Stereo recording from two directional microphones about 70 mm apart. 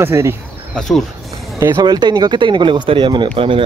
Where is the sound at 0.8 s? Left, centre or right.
Centre.